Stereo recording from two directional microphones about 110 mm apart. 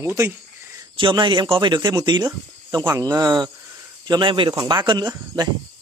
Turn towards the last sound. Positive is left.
turn(degrees=-40)  # may be behind; listen again after turning